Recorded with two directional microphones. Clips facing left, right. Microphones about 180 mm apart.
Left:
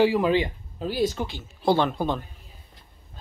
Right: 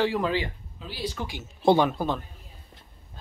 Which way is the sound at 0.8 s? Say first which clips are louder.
Left 10 dB; 45° left (ahead or behind).